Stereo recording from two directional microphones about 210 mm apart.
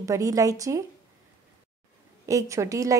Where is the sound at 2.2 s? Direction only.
15° right (ahead or behind).